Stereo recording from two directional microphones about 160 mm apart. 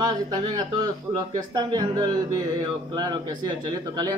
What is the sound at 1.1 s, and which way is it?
Speech, 30° right (ahead or behind).